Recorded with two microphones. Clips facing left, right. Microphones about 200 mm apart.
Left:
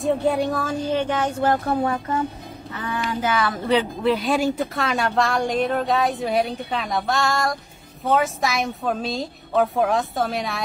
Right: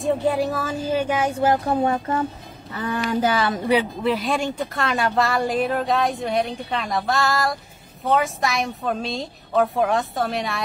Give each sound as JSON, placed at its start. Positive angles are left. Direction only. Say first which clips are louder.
{"t": 0.0, "sound": "speech", "louder": "even", "side_deg": 0}
{"t": 2.7, "sound": "speech", "louder": "right 3 dB", "side_deg": -40}
{"t": 3.4, "sound": "speech", "louder": "right 1 dB", "side_deg": -15}
{"t": 4.0, "sound": "a woman's voice", "louder": "left 2 dB", "side_deg": 0}